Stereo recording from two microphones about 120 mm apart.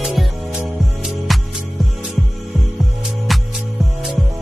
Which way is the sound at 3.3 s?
Centre (ahead or behind).